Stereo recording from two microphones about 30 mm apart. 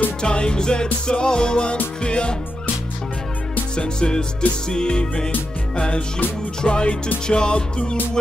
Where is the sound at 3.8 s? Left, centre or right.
Left.